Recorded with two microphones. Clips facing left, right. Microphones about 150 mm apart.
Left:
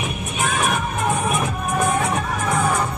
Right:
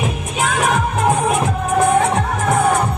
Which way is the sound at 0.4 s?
90° right.